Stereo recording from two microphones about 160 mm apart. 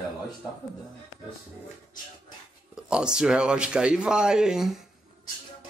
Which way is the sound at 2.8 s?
5° right (ahead or behind).